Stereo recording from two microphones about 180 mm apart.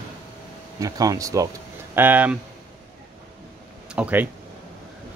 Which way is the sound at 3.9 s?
10° right (ahead or behind).